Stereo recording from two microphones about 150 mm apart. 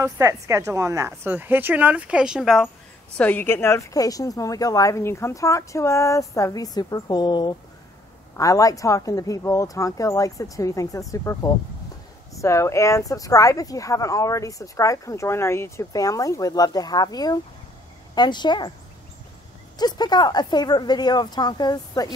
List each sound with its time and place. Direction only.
0.0 s a woman's voice: 20° right (ahead or behind); by 2.7 s centre (ahead or behind)
3.2 s speech: 10° left (ahead or behind); by 18.7 s 30° left (ahead or behind)
19.8 s speech: 25° left (ahead or behind)